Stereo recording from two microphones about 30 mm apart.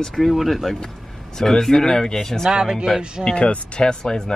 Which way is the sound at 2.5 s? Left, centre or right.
Right.